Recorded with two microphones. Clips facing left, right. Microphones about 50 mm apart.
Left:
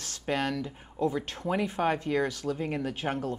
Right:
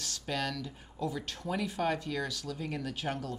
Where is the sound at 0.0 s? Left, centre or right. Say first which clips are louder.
Left 5 dB; left.